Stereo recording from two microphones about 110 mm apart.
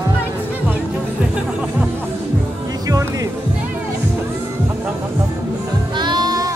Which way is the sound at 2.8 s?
30° right (ahead or behind).